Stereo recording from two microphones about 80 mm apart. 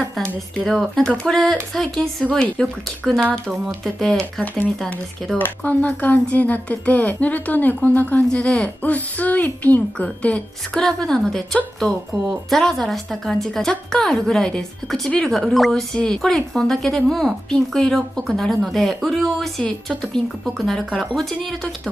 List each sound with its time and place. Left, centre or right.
0.7 s a woman's voice: centre
3.0 s a woman's voice: centre
5.4 s a woman's voice: centre